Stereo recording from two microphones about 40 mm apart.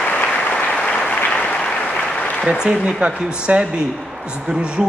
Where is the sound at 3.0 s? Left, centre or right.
Right.